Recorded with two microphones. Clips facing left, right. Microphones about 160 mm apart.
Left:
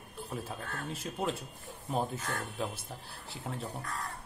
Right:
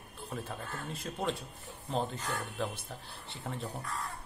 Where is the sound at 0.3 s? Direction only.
5° left (ahead or behind).